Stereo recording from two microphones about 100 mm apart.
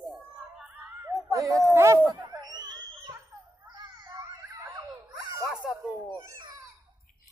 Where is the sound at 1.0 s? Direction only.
35° right (ahead or behind).